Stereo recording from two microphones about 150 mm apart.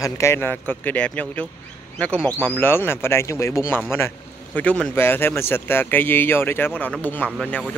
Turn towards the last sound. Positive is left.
turn(degrees=10)  # may be behind; listen again after turning